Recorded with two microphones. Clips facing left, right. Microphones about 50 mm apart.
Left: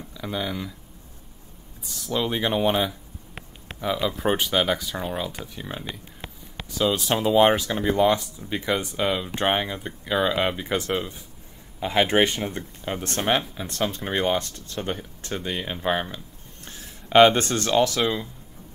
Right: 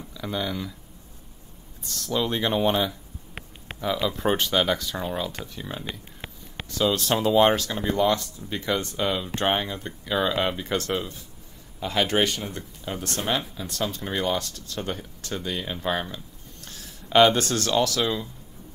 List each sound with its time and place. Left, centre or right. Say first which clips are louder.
0.0 s speech: even; centre
1.9 s speech: even; centre